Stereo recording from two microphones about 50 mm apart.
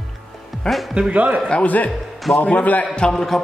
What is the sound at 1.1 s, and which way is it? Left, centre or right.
Speech, right.